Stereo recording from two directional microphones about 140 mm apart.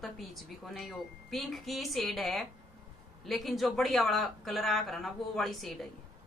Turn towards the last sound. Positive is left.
turn(degrees=0)  # may be behind; listen again after turning